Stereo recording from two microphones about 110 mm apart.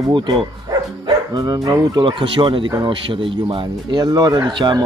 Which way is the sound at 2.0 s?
45° right (ahead or behind).